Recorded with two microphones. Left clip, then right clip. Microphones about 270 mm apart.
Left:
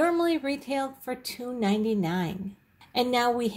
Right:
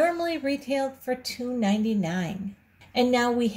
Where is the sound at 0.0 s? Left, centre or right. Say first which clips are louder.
Even; centre.